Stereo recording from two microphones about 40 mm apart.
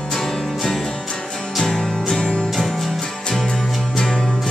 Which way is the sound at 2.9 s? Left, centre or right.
Centre.